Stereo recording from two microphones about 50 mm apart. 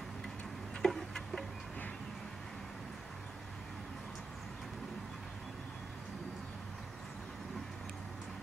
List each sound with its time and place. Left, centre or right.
0.8 s tick-tock: centre